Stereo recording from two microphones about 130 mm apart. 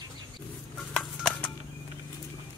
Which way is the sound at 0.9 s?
Centre (ahead or behind).